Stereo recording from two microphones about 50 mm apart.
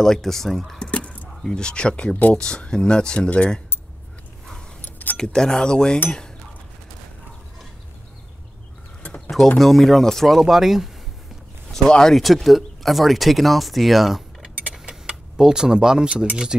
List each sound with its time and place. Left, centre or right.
0.0 s speech: centre
0.7 s a sound: left
1.4 s speech: centre
4.8 s keys jangling: left
5.1 s speech: centre
6.0 s cutlery: centre
9.6 s speech: centre
11.7 s speech: centre
14.7 s keys jangling: centre